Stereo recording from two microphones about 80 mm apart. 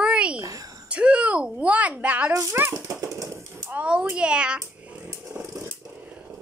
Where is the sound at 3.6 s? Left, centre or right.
Centre.